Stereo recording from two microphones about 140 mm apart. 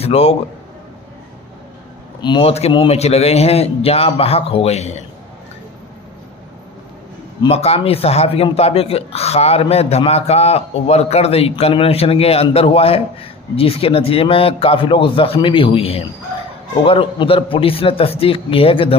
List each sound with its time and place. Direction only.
0.0 s a man's voice: 45° left (ahead or behind)
2.2 s speech: 40° left (ahead or behind)
7.4 s a man's voice: 45° left (ahead or behind)